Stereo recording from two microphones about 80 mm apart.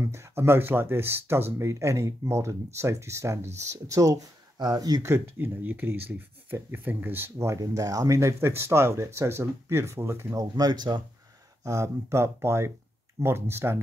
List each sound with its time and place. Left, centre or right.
0.0 s speech: right
4.6 s speech: right
5.0 s speech: right
7.5 s speech: right
10.5 s speech: right
11.6 s speech: right